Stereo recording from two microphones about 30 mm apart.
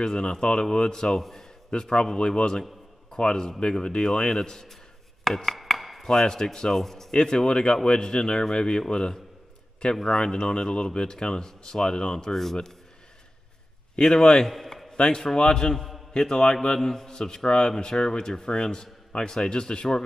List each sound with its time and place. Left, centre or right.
0.0 s speech: left
5.2 s chopping: centre
6.0 s a man's voice: left
7.2 s speech: left
12.3 s a man's voice: centre
13.9 s speech: left